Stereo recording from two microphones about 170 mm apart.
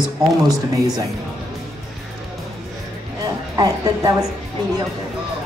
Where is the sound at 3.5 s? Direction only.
20° right (ahead or behind).